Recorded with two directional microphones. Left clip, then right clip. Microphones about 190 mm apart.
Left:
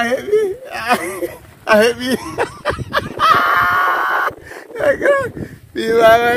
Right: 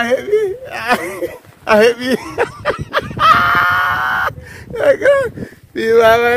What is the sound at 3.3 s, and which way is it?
Chicken, 25° right (ahead or behind).